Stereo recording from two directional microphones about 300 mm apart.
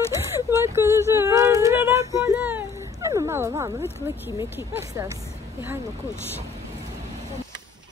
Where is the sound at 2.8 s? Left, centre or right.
Centre.